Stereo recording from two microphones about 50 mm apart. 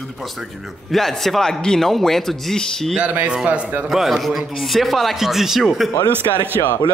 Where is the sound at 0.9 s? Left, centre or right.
Centre.